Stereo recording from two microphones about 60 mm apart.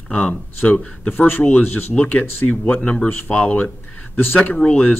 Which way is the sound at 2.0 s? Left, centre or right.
Centre.